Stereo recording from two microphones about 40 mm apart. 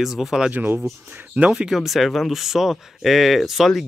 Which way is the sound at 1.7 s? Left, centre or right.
Centre.